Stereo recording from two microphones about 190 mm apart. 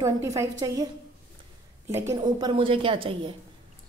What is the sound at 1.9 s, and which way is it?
A woman's voice, 15° right (ahead or behind).